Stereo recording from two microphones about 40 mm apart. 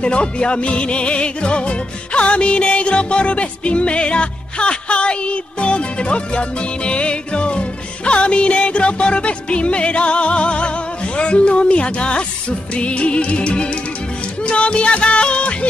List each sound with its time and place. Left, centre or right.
0.0 s music: left